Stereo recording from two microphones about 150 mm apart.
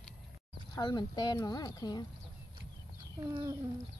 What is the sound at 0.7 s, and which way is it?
Speech, 30° left (ahead or behind).